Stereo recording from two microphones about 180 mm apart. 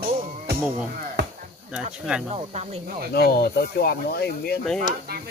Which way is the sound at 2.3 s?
35° right (ahead or behind).